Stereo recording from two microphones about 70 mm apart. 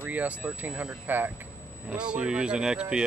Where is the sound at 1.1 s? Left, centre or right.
Right.